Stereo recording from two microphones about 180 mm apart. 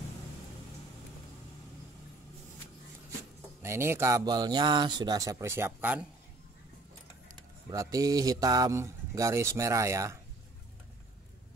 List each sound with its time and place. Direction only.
3.6 s speech: 15° right (ahead or behind)
7.7 s speech: 20° right (ahead or behind)